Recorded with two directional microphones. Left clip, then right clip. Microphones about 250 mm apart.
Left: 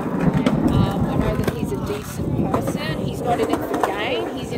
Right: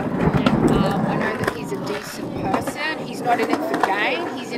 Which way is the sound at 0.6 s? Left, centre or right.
Right.